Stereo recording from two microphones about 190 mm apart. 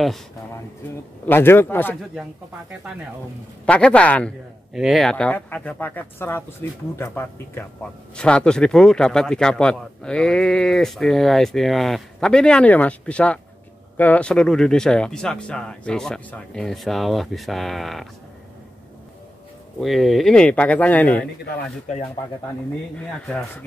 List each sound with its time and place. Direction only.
1.2 s speech: 10° left (ahead or behind)
3.6 s speech: 5° left (ahead or behind)
19.8 s speech: centre (ahead or behind)
22.9 s speech: centre (ahead or behind)